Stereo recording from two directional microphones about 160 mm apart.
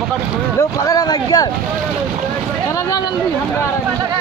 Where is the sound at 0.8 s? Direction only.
25° left (ahead or behind).